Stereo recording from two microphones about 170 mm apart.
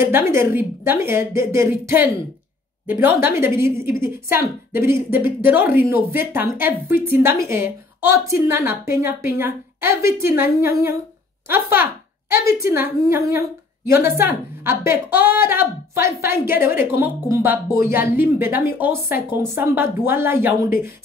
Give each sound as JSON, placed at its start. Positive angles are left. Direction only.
{"t": 0.0, "sound": "a woman's voice", "side_deg": -15}